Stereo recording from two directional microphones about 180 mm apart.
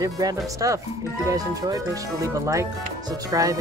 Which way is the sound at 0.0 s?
20° right (ahead or behind).